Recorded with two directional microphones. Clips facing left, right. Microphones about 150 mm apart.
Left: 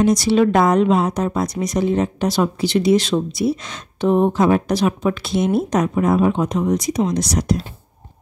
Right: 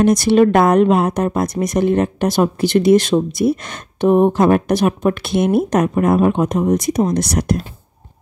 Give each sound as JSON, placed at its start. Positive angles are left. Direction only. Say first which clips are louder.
{"t": 0.0, "sound": "a woman's voice", "louder": "right 3 dB", "side_deg": -55}
{"t": 4.1, "sound": "a sound", "louder": "right 3 dB", "side_deg": -15}
{"t": 4.4, "sound": "a woman's voice", "louder": "right 2 dB", "side_deg": -55}